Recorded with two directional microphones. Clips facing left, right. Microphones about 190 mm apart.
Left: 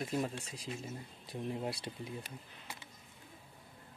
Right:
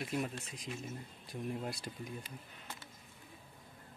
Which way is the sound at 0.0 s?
30° left (ahead or behind).